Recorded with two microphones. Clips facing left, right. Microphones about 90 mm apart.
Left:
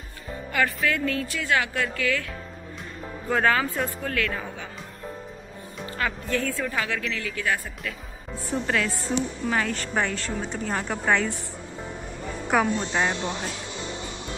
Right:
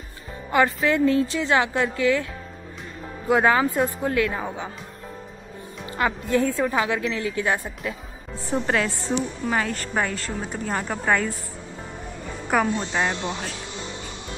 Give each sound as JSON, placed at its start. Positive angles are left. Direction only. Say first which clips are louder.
{"t": 0.5, "sound": "speech", "louder": "right 5 dB", "side_deg": -25}
{"t": 3.3, "sound": "speech", "louder": "right 4 dB", "side_deg": -15}
{"t": 5.9, "sound": "a woman's voice", "louder": "right 4 dB", "side_deg": -20}
{"t": 9.5, "sound": "a woman's voice", "louder": "right 2 dB", "side_deg": -5}
{"t": 12.4, "sound": "a woman's voice", "louder": "right 1 dB", "side_deg": 0}